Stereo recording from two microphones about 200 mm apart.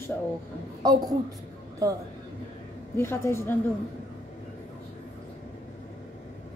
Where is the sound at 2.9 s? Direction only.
10° left (ahead or behind).